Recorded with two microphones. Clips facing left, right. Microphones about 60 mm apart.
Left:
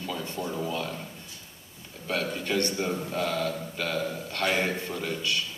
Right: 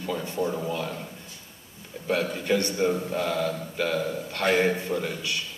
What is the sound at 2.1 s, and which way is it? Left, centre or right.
A man's voice, right.